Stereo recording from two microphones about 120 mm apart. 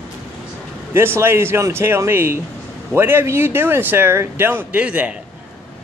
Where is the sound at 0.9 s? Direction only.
20° right (ahead or behind).